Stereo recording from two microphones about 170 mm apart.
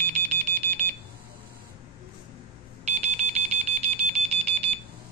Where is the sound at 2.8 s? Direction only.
40° right (ahead or behind).